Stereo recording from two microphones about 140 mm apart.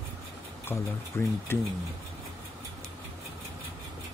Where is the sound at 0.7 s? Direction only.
15° left (ahead or behind).